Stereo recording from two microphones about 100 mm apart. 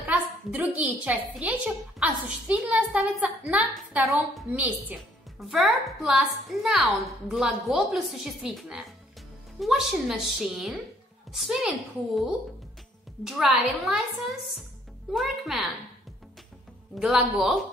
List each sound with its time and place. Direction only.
0.0 s a sound: 20° right (ahead or behind)
1.4 s a woman's voice: 15° right (ahead or behind)
4.6 s a woman's voice: 15° right (ahead or behind)
5.5 s a woman's voice: centre (ahead or behind)
13.2 s a woman's voice: 5° right (ahead or behind)
16.9 s a woman's voice: 5° right (ahead or behind)